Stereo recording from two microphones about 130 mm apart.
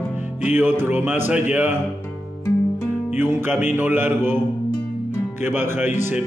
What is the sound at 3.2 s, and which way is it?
Music, 15° right (ahead or behind).